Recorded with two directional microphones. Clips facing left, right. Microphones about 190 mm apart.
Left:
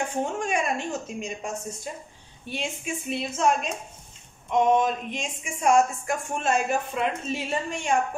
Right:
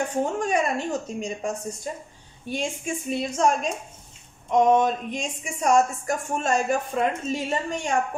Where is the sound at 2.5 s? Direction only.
45° right (ahead or behind).